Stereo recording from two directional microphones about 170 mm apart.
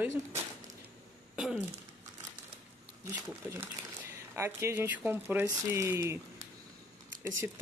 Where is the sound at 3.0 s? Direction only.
15° right (ahead or behind).